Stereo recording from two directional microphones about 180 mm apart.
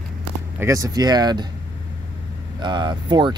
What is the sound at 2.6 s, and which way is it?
Speech, 25° right (ahead or behind).